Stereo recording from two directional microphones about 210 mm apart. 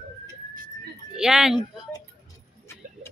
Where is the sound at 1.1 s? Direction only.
5° right (ahead or behind).